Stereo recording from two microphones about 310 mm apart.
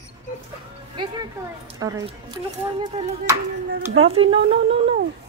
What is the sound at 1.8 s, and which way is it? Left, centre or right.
A woman's voice, centre.